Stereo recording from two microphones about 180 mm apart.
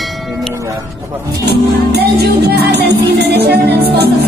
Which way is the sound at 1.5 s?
65° right (ahead or behind).